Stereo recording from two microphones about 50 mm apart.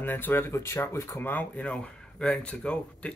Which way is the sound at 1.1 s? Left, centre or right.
Left.